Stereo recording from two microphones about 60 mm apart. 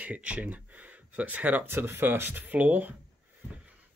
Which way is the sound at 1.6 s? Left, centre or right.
Right.